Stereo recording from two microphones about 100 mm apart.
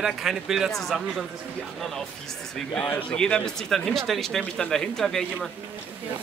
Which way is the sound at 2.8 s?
15° left (ahead or behind).